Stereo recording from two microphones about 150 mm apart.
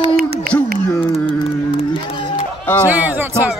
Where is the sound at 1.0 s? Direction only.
35° left (ahead or behind).